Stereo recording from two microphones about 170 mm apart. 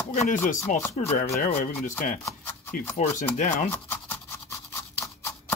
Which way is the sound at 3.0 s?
45° left (ahead or behind).